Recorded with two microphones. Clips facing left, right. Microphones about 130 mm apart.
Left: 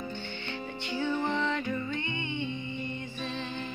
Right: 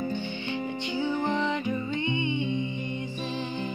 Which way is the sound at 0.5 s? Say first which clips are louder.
Right 5 dB; 15° right (ahead or behind).